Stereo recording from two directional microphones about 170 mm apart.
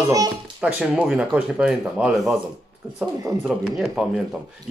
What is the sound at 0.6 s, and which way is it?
Speech, 5° right (ahead or behind).